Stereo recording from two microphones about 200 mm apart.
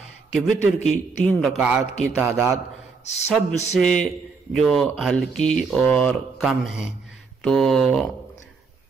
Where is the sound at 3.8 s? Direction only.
Centre (ahead or behind).